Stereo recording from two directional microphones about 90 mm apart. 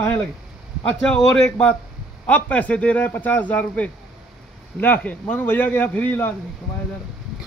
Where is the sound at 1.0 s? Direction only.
10° left (ahead or behind).